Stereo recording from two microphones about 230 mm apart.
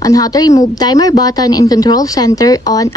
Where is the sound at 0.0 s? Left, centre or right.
Centre.